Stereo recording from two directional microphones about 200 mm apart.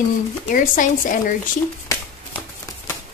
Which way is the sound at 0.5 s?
40° left (ahead or behind).